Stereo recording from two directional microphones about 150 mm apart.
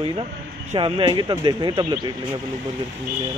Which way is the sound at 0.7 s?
35° right (ahead or behind).